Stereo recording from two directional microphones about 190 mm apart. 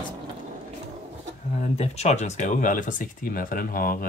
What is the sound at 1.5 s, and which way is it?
Speech, 35° left (ahead or behind).